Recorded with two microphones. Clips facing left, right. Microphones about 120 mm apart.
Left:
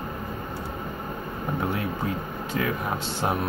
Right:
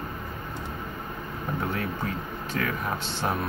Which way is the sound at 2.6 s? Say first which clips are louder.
Left 2 dB; 20° left (ahead or behind).